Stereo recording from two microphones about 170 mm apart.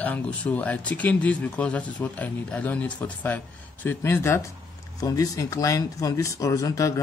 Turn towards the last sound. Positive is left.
turn(degrees=20)  # may be behind; listen again after turning